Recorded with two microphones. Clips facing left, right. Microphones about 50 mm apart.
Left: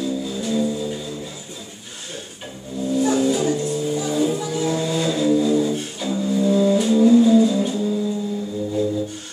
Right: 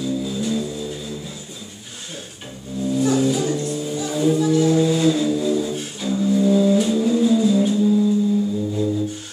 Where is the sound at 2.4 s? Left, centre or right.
Centre.